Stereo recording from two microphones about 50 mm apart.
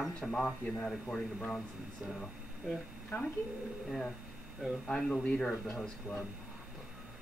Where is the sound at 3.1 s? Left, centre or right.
Left.